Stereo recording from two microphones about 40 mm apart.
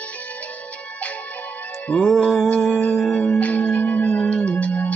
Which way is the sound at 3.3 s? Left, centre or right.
Left.